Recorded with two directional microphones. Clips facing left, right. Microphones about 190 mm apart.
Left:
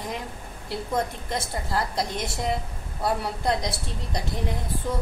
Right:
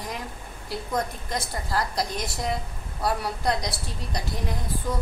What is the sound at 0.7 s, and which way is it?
A woman's voice, 25° left (ahead or behind).